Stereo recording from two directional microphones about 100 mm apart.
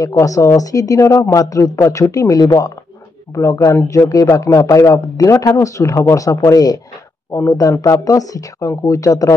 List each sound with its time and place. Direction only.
0.0 s a man's voice: 35° left (ahead or behind)